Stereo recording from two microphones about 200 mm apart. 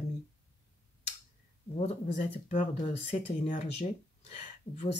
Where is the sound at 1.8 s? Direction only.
35° left (ahead or behind).